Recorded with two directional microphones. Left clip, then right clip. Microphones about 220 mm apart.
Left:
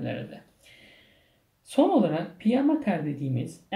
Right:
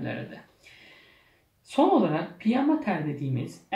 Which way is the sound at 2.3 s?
50° left (ahead or behind).